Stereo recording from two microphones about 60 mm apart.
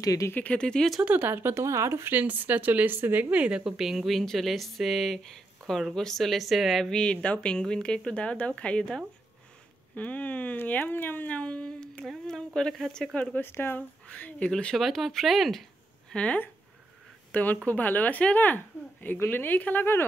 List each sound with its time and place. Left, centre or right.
0.0 s speech: left
0.3 s speech: left
0.6 s speech: centre
1.0 s speech: right
1.6 s speech: right
2.1 s speech: right
3.7 s speech: centre
6.9 s speech: centre; by 11.3 s left
11.3 s speech: centre
13.4 s speech: left
13.7 s speech: left
14.5 s speech: centre
16.1 s speech: centre
17.3 s speech: left